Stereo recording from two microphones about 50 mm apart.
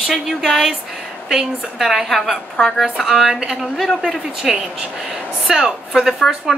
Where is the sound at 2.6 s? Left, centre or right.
Left.